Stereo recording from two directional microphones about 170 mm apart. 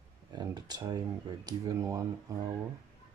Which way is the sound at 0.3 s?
25° right (ahead or behind).